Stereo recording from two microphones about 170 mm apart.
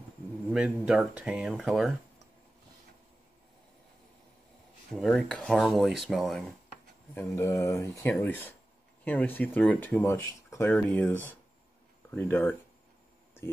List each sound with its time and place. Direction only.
0.5 s speech: 5° right (ahead or behind)
4.9 s speech: 5° left (ahead or behind)
7.2 s speech: 15° left (ahead or behind)
13.4 s a sound: 15° left (ahead or behind)